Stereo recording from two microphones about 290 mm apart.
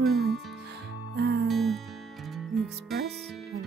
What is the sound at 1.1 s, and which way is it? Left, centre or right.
Music, right.